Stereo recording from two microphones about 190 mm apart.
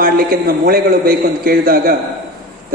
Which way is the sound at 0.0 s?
50° right (ahead or behind).